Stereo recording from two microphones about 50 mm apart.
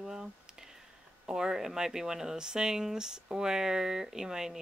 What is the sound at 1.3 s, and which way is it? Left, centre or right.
Speech, centre.